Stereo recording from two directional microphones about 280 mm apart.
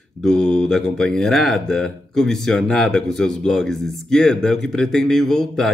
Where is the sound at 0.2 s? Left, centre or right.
Centre.